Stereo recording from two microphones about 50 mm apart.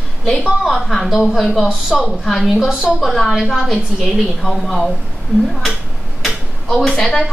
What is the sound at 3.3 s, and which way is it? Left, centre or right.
A woman's voice, centre.